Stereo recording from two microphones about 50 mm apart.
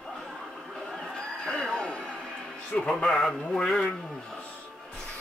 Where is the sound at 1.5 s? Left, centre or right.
Centre.